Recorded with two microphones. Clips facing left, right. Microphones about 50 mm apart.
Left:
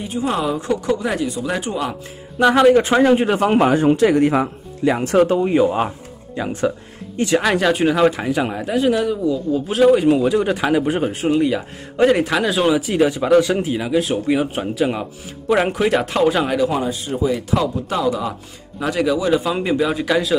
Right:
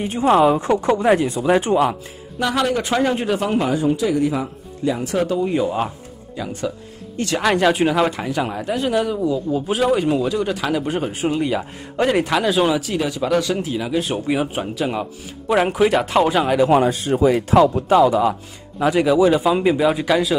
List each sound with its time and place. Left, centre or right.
0.0 s speech: right
2.3 s speech: left
3.4 s speech: left
5.4 s speech: centre
7.3 s speech: centre
10.9 s speech: centre
12.9 s speech: centre
13.8 s speech: centre
16.6 s speech: right
17.8 s speech: right; by 20.3 s centre